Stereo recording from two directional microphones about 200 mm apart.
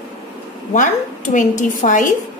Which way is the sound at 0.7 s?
40° left (ahead or behind).